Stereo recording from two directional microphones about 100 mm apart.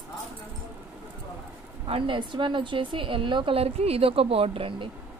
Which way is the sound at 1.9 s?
60° right (ahead or behind).